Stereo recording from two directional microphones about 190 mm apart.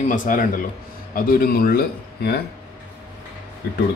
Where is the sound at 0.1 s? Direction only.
45° left (ahead or behind).